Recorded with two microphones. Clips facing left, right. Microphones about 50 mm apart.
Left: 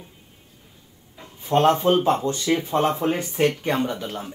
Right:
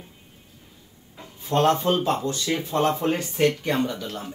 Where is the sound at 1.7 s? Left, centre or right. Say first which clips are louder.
Left 3 dB; left.